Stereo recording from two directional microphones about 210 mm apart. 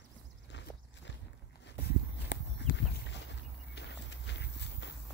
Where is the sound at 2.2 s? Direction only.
55° left (ahead or behind).